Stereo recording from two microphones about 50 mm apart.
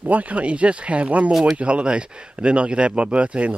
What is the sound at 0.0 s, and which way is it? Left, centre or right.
Speech, right.